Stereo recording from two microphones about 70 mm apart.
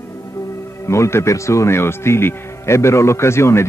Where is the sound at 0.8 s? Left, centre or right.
Left.